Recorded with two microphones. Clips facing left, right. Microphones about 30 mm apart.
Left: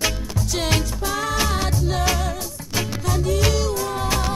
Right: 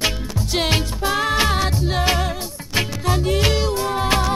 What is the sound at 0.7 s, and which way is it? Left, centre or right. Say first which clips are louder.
Music: right 2 dB; right.